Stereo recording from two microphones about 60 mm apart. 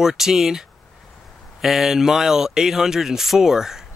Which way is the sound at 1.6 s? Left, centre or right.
Centre.